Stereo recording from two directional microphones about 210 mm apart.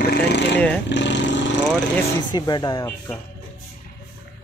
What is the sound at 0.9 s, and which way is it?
Speech, 55° left (ahead or behind).